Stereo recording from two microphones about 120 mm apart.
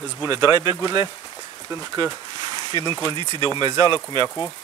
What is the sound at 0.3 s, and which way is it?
Speech, 20° right (ahead or behind).